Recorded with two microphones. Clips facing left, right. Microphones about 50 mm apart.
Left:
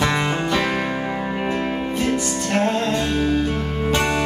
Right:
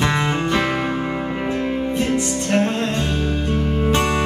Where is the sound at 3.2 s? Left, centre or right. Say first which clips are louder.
Left 2 dB; left.